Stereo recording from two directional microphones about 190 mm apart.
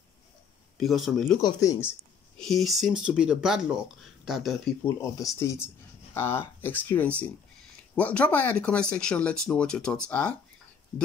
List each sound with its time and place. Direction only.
0.7 s speech: centre (ahead or behind)
1.4 s speech: 20° left (ahead or behind)
2.4 s speech: centre (ahead or behind)
4.8 s speech: 15° left (ahead or behind)